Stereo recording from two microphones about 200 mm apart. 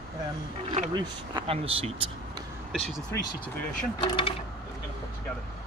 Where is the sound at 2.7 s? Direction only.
Centre (ahead or behind).